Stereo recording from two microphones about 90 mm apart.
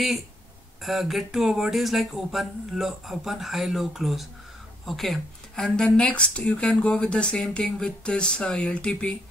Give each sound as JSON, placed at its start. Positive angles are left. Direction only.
{"t": 0.8, "sound": "speech", "side_deg": 0}
{"t": 5.9, "sound": "speech", "side_deg": 15}